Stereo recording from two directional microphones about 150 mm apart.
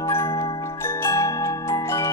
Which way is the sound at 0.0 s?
20° left (ahead or behind).